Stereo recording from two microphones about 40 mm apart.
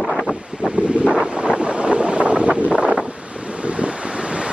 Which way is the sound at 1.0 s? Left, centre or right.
Centre.